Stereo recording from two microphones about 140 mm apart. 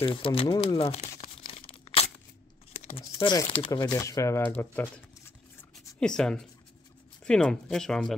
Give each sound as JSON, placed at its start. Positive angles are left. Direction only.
{"t": 0.0, "sound": "speech", "side_deg": 40}
{"t": 1.2, "sound": "tearing", "side_deg": 40}
{"t": 3.0, "sound": "speech", "side_deg": 30}
{"t": 5.6, "sound": "a sound", "side_deg": 5}
{"t": 7.2, "sound": "speech", "side_deg": 5}